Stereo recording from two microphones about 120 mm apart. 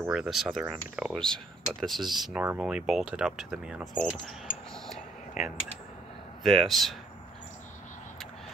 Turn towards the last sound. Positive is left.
turn(degrees=0)  # may be behind; listen again after turning